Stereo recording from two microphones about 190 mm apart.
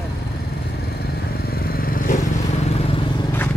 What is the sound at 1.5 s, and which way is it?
Vehicle, 50° left (ahead or behind).